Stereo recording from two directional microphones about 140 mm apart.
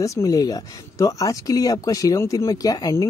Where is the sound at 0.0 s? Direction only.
25° left (ahead or behind).